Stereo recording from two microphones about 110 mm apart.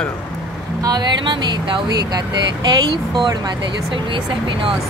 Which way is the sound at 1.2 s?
45° right (ahead or behind).